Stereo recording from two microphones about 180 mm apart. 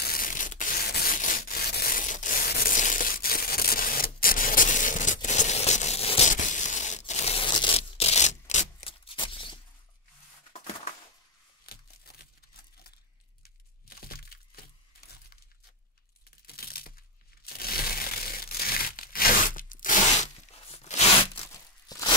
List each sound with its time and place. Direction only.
0.0 s rub: 55° left (ahead or behind); by 9.6 s 30° left (ahead or behind)
11.6 s a sound: 55° left (ahead or behind)
16.4 s crushing: 55° left (ahead or behind)
17.6 s tearing: 55° left (ahead or behind)
20.5 s tearing: 35° left (ahead or behind)
21.5 s tearing: 20° left (ahead or behind)